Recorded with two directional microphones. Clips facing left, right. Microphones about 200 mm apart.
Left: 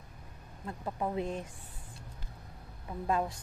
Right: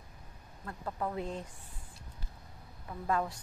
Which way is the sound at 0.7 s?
15° left (ahead or behind).